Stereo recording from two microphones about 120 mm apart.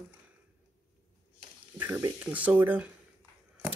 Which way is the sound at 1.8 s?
15° right (ahead or behind).